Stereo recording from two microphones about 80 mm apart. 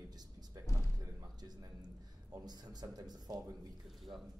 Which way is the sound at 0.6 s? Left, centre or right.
Left.